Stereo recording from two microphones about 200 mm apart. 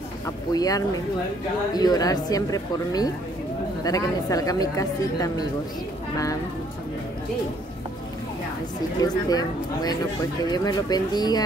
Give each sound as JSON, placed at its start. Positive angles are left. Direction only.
{"t": 0.5, "sound": "a woman's voice", "side_deg": 20}
{"t": 9.0, "sound": "a woman's voice", "side_deg": 20}